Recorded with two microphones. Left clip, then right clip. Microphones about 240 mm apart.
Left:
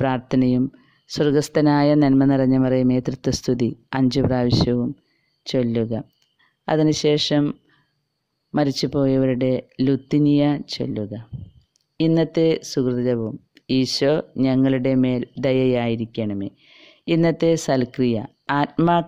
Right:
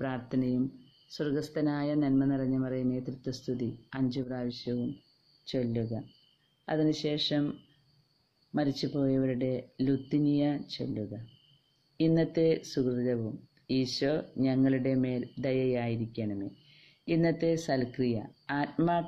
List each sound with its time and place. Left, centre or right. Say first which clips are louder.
0.0 s speech: left 13 dB; left
8.5 s speech: left 11 dB; left